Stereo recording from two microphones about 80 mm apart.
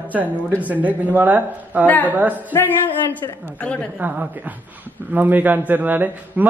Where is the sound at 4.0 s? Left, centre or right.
Right.